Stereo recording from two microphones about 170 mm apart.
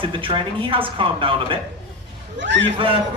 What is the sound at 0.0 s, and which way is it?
Speech, 30° right (ahead or behind).